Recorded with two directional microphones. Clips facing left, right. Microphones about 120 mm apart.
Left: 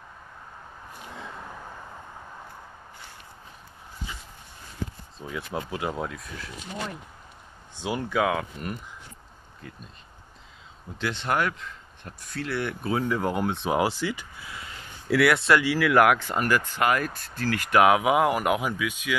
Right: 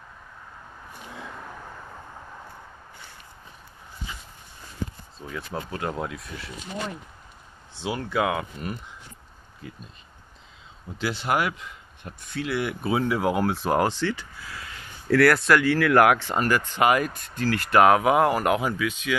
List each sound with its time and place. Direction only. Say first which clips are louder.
1.1 s vehicle: right 1 dB; centre (ahead or behind)
5.2 s speech: left 1 dB; 5° left (ahead or behind)
7.8 s speech: even; 5° left (ahead or behind)
11.0 s speech: right 1 dB; 5° right (ahead or behind)
14.4 s a sound: right 1 dB; 25° left (ahead or behind)
15.0 s speech: right 2 dB; 5° left (ahead or behind)